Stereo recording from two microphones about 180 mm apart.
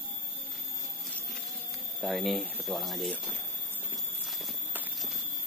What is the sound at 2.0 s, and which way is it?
Speech, centre (ahead or behind).